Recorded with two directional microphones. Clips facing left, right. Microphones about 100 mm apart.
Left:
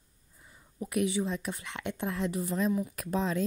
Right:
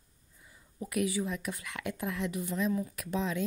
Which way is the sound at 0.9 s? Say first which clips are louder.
Left 2 dB; 25° left (ahead or behind).